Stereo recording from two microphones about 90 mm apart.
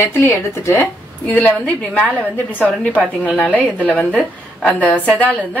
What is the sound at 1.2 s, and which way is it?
A woman's voice, 20° left (ahead or behind).